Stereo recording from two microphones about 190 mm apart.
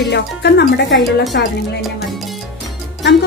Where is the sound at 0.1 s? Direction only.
60° left (ahead or behind).